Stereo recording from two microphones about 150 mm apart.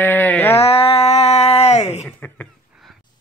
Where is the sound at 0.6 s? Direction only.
40° left (ahead or behind).